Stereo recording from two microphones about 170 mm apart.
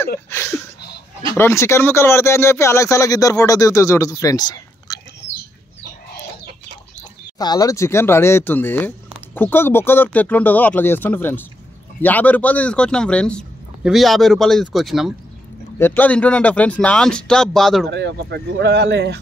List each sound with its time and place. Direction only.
0.3 s speech: 15° left (ahead or behind)
0.7 s chuckle: 75° left (ahead or behind)
1.3 s speech: 15° left (ahead or behind)
7.0 s a man's voice: 25° left (ahead or behind); by 15.1 s centre (ahead or behind)
15.8 s speech: 10° left (ahead or behind)
17.8 s speech: 85° right